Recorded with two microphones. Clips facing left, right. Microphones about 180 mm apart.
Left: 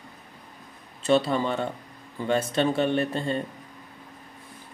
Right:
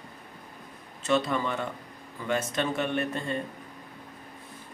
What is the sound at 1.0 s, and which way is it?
Speech, 30° left (ahead or behind).